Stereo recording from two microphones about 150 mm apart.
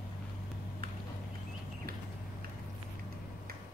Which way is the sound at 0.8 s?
85° right.